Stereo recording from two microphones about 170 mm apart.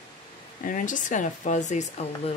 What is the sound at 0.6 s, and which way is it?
Speech, 50° left (ahead or behind).